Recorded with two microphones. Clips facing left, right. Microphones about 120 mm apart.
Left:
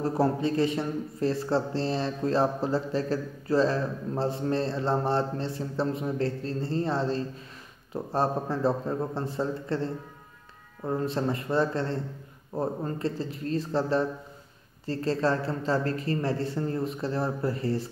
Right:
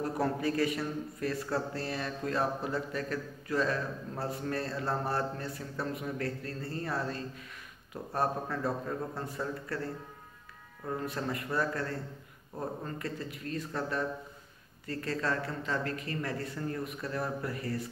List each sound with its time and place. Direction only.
0.0 s speech: 30° left (ahead or behind)